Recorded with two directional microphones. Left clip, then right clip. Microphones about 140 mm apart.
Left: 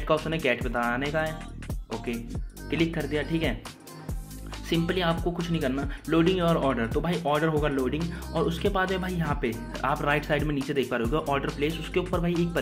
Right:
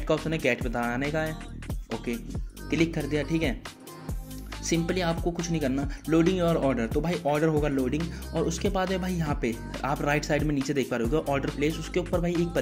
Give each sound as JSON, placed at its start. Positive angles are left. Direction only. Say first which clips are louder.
{"t": 0.0, "sound": "speech", "louder": "left 1 dB", "side_deg": -45}
{"t": 2.9, "sound": "speech", "louder": "even", "side_deg": -50}
{"t": 4.6, "sound": "speech", "louder": "left 1 dB", "side_deg": -50}